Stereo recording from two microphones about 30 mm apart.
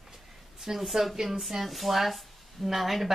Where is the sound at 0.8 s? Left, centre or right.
Centre.